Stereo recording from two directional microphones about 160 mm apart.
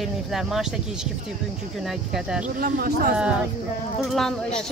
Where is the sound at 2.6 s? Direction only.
65° right (ahead or behind).